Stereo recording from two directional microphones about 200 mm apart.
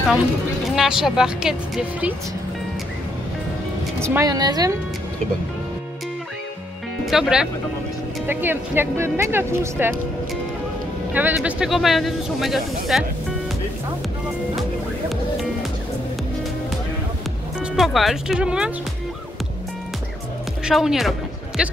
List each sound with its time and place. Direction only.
0.7 s speech: 5° right (ahead or behind)
4.0 s speech: 15° right (ahead or behind)
7.1 s speech: 5° right (ahead or behind)
11.1 s speech: 10° right (ahead or behind)
17.6 s speech: centre (ahead or behind)
20.6 s speech: centre (ahead or behind)